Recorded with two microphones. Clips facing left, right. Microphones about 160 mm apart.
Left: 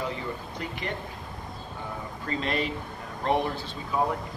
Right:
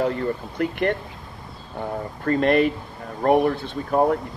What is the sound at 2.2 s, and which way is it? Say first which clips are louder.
Speech: right 11 dB; 55° right (ahead or behind).